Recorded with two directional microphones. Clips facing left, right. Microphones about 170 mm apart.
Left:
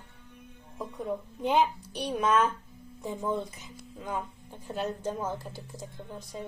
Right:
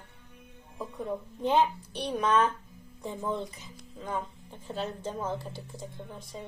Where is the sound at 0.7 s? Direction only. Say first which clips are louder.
Left 1 dB; centre (ahead or behind).